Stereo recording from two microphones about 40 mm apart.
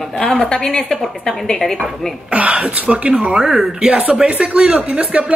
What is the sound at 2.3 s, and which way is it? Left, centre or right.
Speech, right.